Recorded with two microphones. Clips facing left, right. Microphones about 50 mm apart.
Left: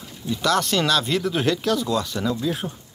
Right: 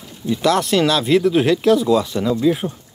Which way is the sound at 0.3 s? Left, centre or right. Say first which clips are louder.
Right 5 dB; centre.